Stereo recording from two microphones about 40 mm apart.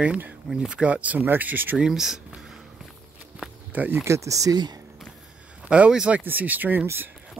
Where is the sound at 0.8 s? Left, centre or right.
Right.